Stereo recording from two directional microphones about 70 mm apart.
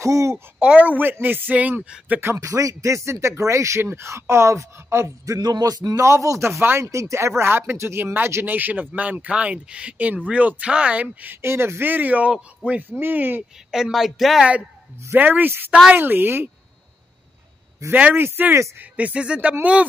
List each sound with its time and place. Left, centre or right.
0.0 s speech: right
0.6 s speech: right
2.3 s speech: right
5.4 s speech: right
5.9 s speech: right
6.6 s speech: right
8.5 s speech: right
11.4 s speech: right; by 12.8 s centre
12.9 s speech: right
13.7 s speech: centre
15.1 s speech: right
18.1 s speech: right
18.8 s speech: right